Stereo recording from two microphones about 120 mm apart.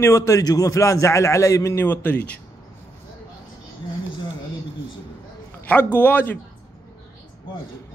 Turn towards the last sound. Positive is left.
turn(degrees=15)  # may be behind; listen again after turning